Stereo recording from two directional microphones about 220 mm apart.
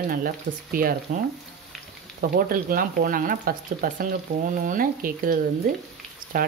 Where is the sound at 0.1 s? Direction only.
40° right (ahead or behind).